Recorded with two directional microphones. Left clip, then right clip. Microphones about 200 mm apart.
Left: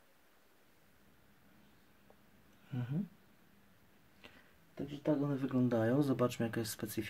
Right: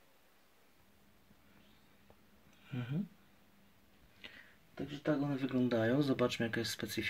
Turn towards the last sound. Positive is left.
turn(degrees=10)  # may be behind; listen again after turning